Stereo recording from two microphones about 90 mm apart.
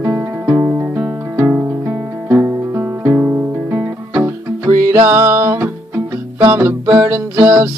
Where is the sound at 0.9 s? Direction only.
20° right (ahead or behind).